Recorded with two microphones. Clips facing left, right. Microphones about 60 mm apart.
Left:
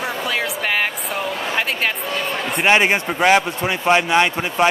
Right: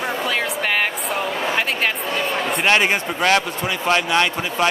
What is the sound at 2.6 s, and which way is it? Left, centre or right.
Speech, centre.